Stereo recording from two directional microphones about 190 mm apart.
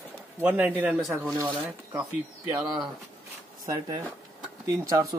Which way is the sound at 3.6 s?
20° right (ahead or behind).